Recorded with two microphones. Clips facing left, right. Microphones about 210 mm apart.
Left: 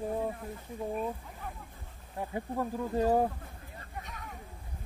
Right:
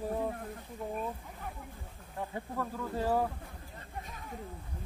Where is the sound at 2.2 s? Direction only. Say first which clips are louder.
Left 3 dB; 15° left (ahead or behind).